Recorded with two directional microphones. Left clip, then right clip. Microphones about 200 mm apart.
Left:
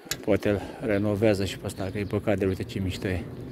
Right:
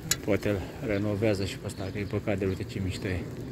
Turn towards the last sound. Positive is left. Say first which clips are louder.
# left 3 dB
turn(degrees=35)  # may be behind; listen again after turning